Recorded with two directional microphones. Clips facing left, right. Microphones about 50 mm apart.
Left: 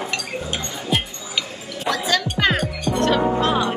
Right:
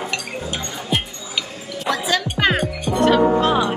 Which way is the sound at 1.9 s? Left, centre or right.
Centre.